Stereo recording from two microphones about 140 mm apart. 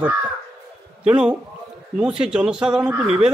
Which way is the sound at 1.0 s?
5° right (ahead or behind).